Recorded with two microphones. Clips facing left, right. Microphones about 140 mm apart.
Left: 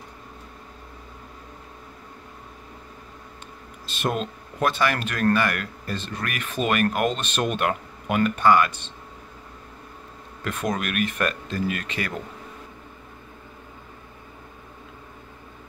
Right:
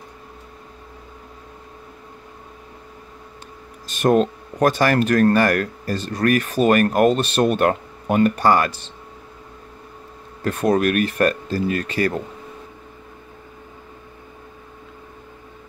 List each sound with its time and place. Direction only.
3.8 s speech: 45° right (ahead or behind)
10.4 s speech: 35° right (ahead or behind)